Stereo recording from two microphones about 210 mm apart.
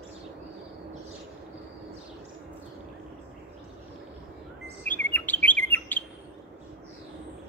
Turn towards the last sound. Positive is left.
turn(degrees=10)  # may be behind; listen again after turning